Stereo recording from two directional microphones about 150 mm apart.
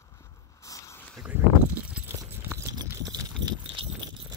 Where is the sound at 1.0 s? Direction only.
5° left (ahead or behind).